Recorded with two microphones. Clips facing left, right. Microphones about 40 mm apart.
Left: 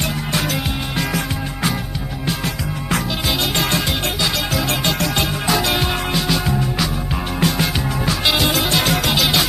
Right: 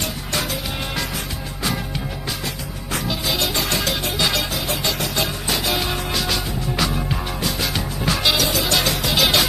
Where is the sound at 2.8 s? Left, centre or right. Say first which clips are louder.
Left 3 dB; left.